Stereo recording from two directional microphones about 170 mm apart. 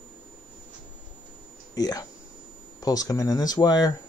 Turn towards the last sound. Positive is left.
turn(degrees=25)  # may be behind; listen again after turning